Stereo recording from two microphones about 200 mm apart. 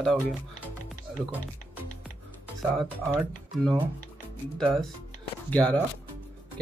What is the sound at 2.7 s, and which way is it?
Speech, 15° right (ahead or behind).